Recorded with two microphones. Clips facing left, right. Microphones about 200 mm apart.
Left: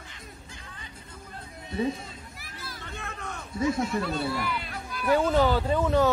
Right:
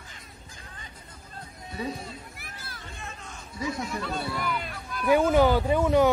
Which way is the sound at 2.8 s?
60° left (ahead or behind).